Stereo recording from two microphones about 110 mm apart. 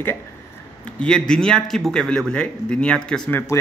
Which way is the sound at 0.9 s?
5° left (ahead or behind).